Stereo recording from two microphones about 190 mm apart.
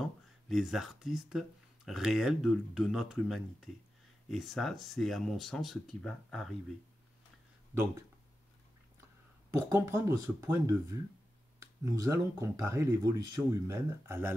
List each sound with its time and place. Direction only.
0.0 s speech: centre (ahead or behind)
7.7 s speech: 15° right (ahead or behind)
9.5 s speech: 15° right (ahead or behind)